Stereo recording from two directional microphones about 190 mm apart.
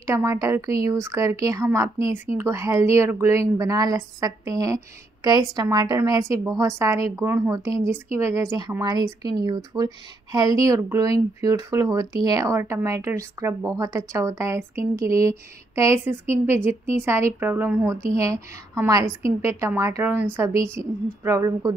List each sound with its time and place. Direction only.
0.0 s a woman's voice: 15° right (ahead or behind)